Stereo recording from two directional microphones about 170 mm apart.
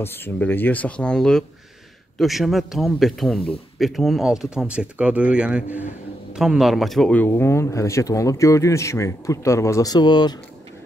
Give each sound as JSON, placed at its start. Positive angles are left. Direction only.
{"t": 0.0, "sound": "speech", "side_deg": 15}